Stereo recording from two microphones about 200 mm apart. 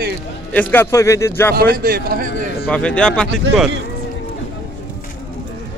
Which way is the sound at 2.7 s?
5° left (ahead or behind).